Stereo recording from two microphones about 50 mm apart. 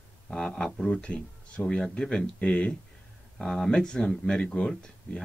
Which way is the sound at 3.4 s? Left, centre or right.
Centre.